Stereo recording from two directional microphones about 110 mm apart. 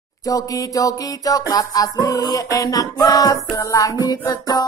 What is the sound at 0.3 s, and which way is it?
Music, 35° left (ahead or behind).